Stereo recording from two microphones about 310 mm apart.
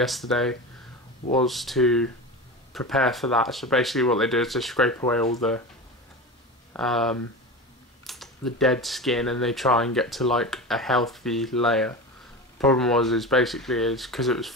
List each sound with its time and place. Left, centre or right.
0.0 s speech: centre
6.7 s speech: centre